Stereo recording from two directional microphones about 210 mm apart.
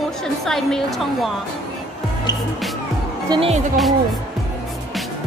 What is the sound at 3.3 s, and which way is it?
Speech, 30° right (ahead or behind).